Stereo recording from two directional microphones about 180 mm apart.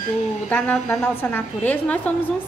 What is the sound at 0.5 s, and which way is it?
A woman's voice, 5° left (ahead or behind).